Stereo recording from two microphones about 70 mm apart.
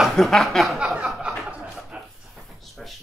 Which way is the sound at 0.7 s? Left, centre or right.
Centre.